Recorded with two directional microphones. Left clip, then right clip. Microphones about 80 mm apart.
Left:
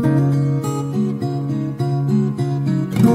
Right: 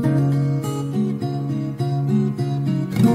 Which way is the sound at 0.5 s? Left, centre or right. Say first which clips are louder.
Left 3 dB; left.